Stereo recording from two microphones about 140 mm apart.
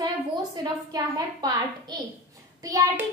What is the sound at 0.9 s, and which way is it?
Speech, 25° right (ahead or behind).